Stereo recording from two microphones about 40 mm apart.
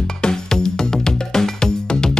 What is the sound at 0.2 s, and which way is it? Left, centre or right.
Music, centre.